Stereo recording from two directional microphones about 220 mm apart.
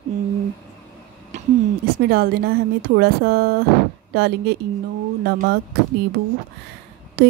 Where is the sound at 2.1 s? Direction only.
45° right (ahead or behind).